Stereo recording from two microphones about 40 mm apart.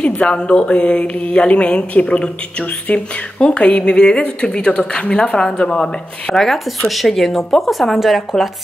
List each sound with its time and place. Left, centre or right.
0.0 s speech: left
6.9 s speech: centre